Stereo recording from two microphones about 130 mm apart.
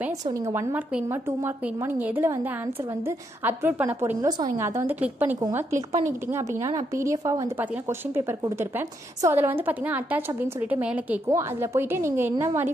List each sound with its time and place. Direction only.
0.5 s a woman's voice: 25° right (ahead or behind)
11.2 s a woman's voice: 20° right (ahead or behind)